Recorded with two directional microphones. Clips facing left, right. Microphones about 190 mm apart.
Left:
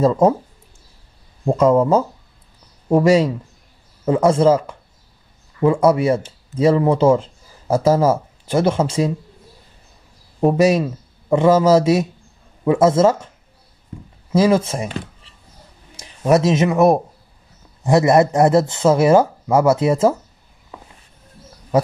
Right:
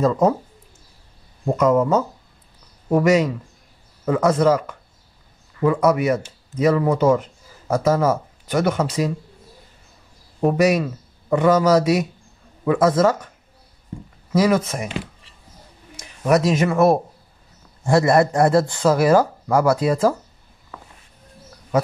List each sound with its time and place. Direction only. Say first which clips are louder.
1.6 s speech: left 3 dB; 30° left (ahead or behind)
10.4 s a man's voice: left 3 dB; 25° left (ahead or behind)
14.3 s speech: left 3 dB; 25° left (ahead or behind)
16.0 s speech: left 2 dB; 25° left (ahead or behind)
20.7 s walk: left 1 dB; 20° left (ahead or behind)